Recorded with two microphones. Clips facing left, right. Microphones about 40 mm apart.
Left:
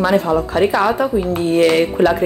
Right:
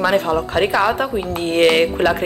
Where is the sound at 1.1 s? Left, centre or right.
Right.